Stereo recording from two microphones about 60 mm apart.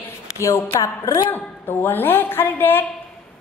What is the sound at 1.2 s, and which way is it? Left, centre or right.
A woman's voice, left.